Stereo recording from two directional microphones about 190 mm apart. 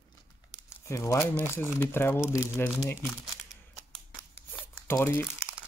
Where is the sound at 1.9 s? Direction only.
10° left (ahead or behind).